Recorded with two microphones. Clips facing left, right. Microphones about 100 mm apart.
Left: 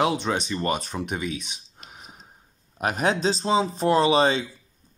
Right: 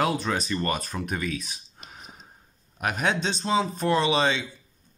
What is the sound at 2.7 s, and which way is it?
Speech, 35° left (ahead or behind).